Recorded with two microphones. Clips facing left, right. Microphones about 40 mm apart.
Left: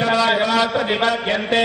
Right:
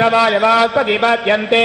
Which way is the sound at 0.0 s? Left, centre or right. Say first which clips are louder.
Right 5 dB; right.